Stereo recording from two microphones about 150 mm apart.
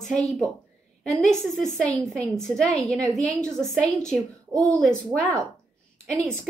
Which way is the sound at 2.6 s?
20° right (ahead or behind).